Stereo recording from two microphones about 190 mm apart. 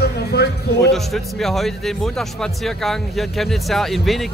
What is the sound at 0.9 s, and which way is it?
Speech, centre (ahead or behind).